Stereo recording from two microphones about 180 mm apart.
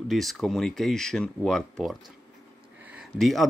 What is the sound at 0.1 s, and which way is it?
Speech, centre (ahead or behind).